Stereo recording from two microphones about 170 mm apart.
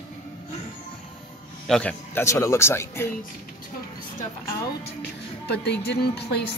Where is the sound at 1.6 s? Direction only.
5° left (ahead or behind).